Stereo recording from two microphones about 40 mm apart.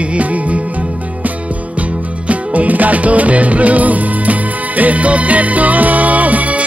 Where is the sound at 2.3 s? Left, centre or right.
Right.